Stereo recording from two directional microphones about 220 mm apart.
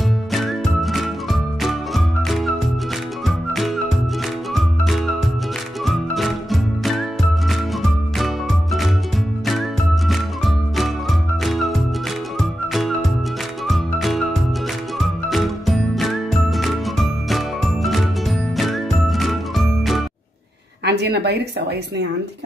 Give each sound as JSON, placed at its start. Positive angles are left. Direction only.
{"t": 0.3, "sound": "music", "side_deg": 0}
{"t": 13.7, "sound": "music", "side_deg": 0}
{"t": 20.8, "sound": "a sound", "side_deg": -50}